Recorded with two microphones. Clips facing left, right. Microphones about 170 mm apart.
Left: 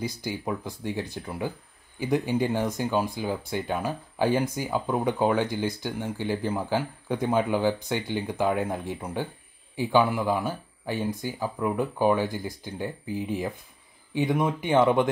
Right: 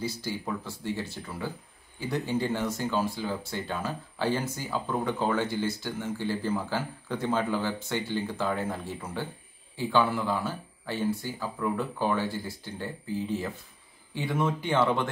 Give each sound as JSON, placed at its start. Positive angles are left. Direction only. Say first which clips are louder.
{"t": 0.0, "sound": "speech", "louder": "left 2 dB", "side_deg": 15}